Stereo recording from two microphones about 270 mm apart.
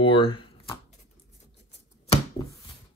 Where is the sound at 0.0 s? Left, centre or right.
Centre.